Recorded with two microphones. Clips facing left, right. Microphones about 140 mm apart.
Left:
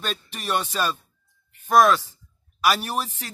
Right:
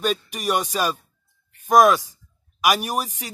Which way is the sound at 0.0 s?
10° right (ahead or behind).